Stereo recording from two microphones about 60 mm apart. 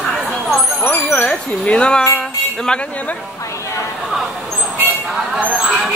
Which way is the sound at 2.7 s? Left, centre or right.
Centre.